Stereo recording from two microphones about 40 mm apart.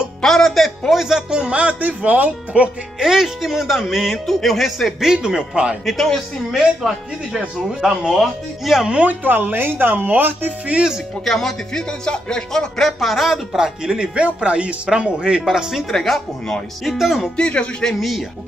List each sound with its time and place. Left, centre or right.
0.2 s music: centre
0.5 s a sound: centre
0.9 s speech: centre
1.6 s speech: right
3.0 s speech: centre
5.0 s speech: centre
9.0 s speech: right
11.2 s speech: centre
12.0 s speech: left
12.8 s speech: centre
15.9 s speech: centre
16.8 s speech: centre
17.4 s speech: left